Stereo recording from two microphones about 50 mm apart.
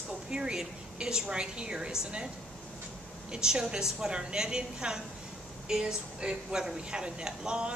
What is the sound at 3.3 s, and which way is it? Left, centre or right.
A woman's voice, centre.